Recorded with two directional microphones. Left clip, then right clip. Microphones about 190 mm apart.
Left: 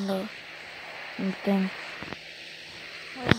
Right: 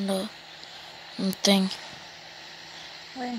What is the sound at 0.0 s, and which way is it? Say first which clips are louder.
Speech: right 1 dB; 10° right (ahead or behind).